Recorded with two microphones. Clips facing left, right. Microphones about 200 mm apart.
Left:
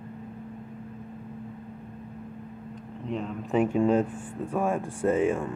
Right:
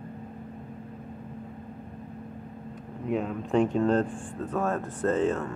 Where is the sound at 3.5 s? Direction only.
10° left (ahead or behind).